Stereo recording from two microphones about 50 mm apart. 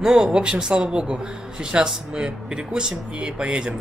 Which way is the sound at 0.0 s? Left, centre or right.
Centre.